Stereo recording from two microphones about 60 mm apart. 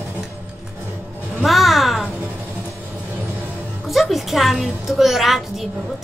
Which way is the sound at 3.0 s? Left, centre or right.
Right.